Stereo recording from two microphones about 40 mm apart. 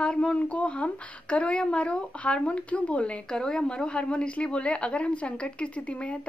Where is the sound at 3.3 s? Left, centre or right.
Centre.